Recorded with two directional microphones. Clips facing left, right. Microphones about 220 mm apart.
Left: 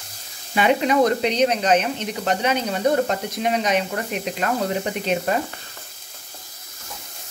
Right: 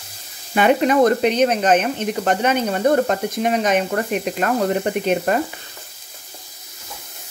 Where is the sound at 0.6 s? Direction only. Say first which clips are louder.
Right 3 dB; 50° right (ahead or behind).